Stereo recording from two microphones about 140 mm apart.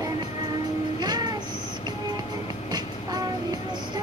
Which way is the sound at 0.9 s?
30° right (ahead or behind).